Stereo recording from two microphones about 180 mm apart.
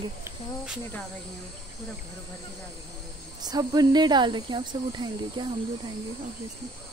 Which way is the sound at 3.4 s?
20° right (ahead or behind).